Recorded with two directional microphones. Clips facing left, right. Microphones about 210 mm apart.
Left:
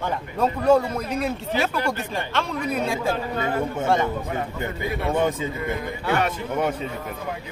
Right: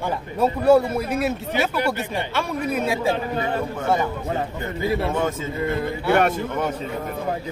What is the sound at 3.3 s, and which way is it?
A man's voice, 25° right (ahead or behind).